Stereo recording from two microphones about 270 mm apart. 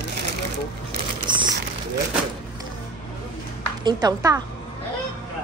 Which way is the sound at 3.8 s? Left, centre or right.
Centre.